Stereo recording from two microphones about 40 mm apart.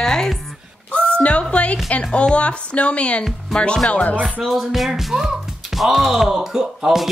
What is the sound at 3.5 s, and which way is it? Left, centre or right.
Music, left.